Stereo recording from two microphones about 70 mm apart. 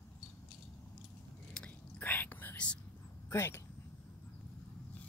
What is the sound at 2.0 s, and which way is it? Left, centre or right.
Whispering, left.